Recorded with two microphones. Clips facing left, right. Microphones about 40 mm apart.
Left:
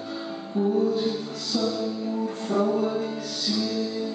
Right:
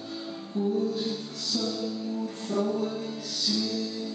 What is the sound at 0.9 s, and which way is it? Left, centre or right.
Music, centre.